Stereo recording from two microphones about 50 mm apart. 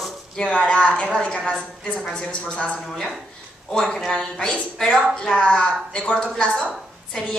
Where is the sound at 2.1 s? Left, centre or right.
Left.